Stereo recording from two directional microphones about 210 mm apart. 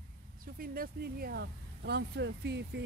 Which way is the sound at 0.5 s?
45° right (ahead or behind).